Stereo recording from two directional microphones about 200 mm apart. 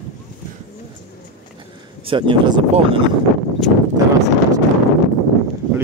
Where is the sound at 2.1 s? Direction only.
25° right (ahead or behind).